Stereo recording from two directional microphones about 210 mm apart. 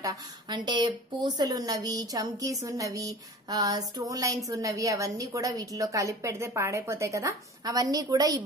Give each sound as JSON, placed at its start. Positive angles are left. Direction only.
{"t": 0.0, "sound": "a woman's voice", "side_deg": -20}